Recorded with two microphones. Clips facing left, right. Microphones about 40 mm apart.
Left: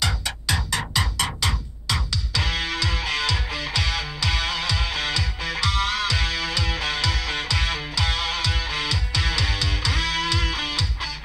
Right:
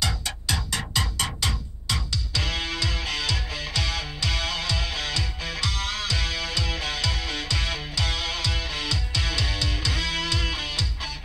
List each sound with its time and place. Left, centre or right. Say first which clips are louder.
0.0 s music: left 3 dB; left
2.4 s music: left 4 dB; left